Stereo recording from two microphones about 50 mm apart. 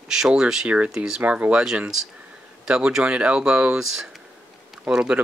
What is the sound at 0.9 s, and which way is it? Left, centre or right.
Speech, centre.